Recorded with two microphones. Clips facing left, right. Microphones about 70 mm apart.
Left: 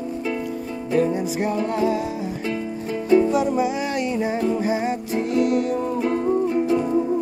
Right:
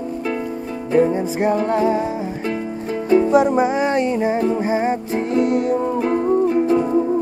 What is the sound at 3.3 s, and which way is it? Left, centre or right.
Music, right.